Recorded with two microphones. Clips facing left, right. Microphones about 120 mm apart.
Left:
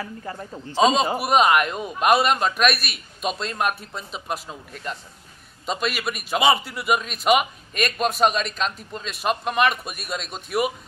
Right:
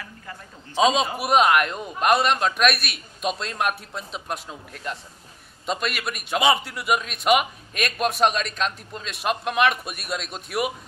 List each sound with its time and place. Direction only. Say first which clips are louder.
0.0 s a man's voice: left 8 dB; 35° left (ahead or behind)
0.7 s a man's voice: left 2 dB; centre (ahead or behind)